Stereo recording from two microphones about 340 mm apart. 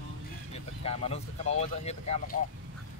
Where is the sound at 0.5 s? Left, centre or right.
Centre.